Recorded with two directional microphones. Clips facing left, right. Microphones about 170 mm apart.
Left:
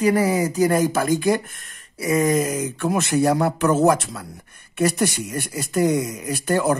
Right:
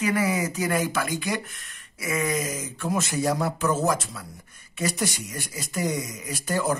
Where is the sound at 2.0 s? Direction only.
35° left (ahead or behind).